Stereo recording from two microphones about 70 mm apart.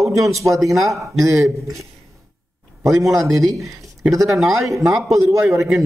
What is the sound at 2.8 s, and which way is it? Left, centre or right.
A man's voice, right.